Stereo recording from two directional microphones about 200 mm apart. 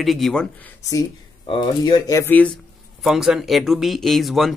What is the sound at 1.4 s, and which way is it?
Speech, 25° left (ahead or behind).